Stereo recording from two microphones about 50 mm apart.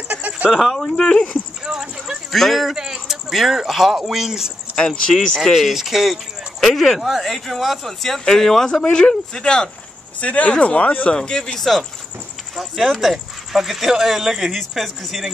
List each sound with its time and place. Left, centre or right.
0.5 s speech: centre
1.7 s a sound: centre
2.3 s speech: centre
4.7 s speech: centre
5.1 s speech: centre
10.2 s speech: left
11.1 s speech: centre
12.5 s speech: centre